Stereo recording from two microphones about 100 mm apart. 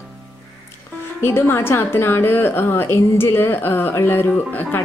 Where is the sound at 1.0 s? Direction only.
25° left (ahead or behind).